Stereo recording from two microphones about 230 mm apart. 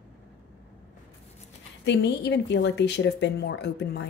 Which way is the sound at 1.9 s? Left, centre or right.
Left.